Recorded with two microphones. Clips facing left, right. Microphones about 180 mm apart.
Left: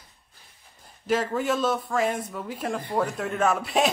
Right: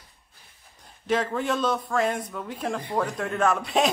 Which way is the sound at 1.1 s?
5° left (ahead or behind).